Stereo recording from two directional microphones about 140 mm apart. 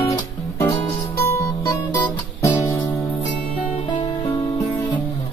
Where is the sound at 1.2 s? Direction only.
20° left (ahead or behind).